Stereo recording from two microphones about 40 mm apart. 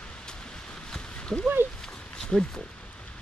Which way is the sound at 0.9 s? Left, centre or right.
Centre.